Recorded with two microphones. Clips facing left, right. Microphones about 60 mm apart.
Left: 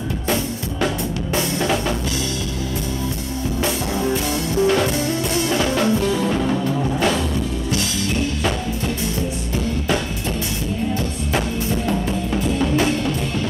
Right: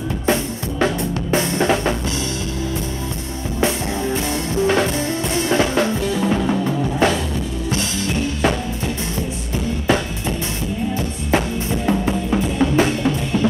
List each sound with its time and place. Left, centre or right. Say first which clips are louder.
0.3 s drum: right 3 dB; right
4.1 s music: even; right
6.1 s music: right 1 dB; centre
11.3 s music: right 3 dB; right
12.1 s drum kit: right 2 dB; right